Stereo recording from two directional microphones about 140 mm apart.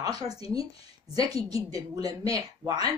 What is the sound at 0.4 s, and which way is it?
Speech, 25° right (ahead or behind).